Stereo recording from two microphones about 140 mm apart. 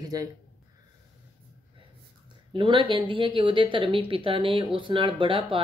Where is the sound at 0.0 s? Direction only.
25° right (ahead or behind).